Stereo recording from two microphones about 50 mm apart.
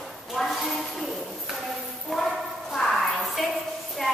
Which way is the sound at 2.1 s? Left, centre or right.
Centre.